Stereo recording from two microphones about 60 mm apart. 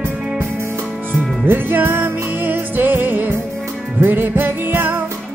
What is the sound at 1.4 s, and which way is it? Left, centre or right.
Music, right.